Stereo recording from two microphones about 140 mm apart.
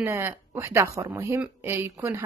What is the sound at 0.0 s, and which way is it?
A woman's voice, 20° right (ahead or behind).